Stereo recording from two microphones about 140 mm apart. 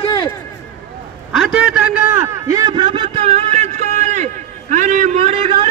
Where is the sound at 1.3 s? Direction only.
5° right (ahead or behind); by 5.5 s 45° right (ahead or behind).